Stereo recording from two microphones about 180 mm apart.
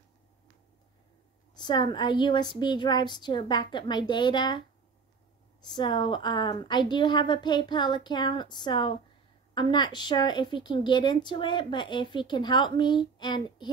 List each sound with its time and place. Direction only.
1.5 s a woman's voice: 25° left (ahead or behind)